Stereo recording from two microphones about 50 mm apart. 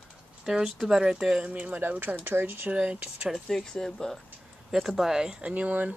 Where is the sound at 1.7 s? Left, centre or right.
Right.